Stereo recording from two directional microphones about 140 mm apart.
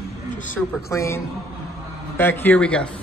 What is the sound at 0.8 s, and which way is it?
A woman's voice, 20° left (ahead or behind).